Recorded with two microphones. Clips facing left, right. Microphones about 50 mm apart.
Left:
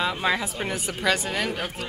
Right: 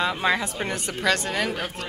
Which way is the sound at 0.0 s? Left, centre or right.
Centre.